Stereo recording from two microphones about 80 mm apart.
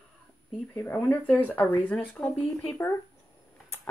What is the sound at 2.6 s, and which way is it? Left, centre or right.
Speech, left.